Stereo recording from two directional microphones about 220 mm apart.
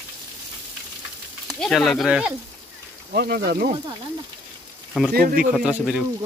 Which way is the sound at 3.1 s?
45° right (ahead or behind).